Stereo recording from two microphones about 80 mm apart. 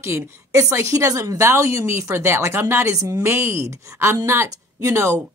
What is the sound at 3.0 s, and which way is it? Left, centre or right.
Speech, right.